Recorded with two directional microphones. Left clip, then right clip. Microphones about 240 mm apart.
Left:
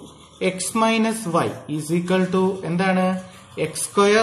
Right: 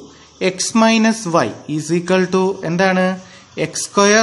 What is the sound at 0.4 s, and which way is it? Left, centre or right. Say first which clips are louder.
Speech: right 5 dB; right.